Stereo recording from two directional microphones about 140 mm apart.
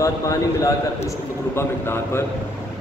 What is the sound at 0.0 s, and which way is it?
A man's voice, 25° left (ahead or behind).